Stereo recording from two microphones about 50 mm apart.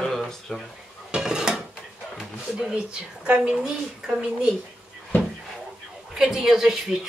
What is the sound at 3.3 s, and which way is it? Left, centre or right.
Speech, centre.